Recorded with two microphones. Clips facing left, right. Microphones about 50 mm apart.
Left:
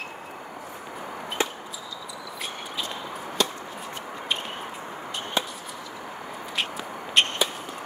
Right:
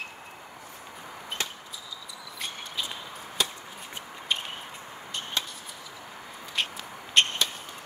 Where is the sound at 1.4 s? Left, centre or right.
Left.